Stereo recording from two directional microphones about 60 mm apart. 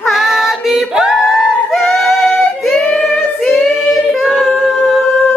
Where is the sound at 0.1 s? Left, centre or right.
Centre.